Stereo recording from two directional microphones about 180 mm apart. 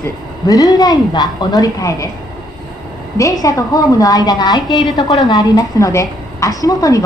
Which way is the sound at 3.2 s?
20° left (ahead or behind).